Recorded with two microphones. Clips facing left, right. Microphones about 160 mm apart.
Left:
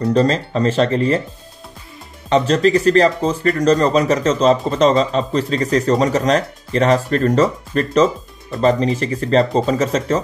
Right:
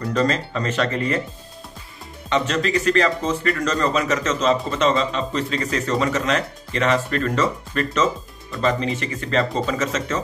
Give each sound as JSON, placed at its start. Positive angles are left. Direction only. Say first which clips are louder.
{"t": 0.0, "sound": "speech", "louder": "left 6 dB", "side_deg": 30}
{"t": 2.2, "sound": "speech", "louder": "left 7 dB", "side_deg": 35}